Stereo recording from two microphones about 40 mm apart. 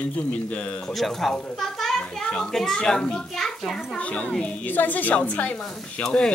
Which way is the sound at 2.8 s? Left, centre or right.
Left.